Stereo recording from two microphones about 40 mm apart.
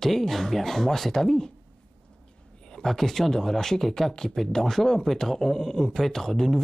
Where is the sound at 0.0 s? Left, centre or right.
Centre.